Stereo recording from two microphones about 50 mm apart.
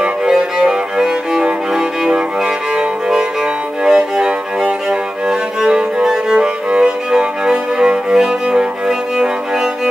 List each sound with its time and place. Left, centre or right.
0.0 s music: centre